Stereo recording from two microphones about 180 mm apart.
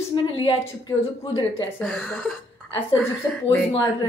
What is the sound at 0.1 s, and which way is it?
A woman's voice, 30° left (ahead or behind).